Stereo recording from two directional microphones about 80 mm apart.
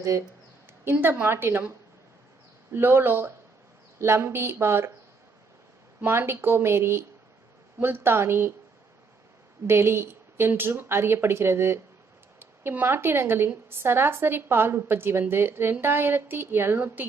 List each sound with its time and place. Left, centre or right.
0.8 s a woman's voice: right
2.7 s a woman's voice: right
6.1 s a woman's voice: right
9.7 s a woman's voice: right